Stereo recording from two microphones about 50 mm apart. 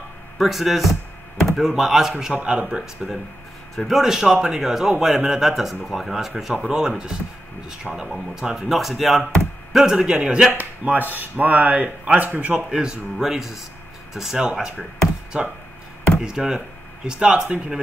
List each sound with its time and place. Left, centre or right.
0.4 s speech: centre
1.4 s a sound: centre
1.7 s speech: centre
3.7 s speech: centre
4.0 s speech: centre
9.7 s a sound: centre
9.9 s speech: centre
10.5 s speech: right
12.6 s speech: centre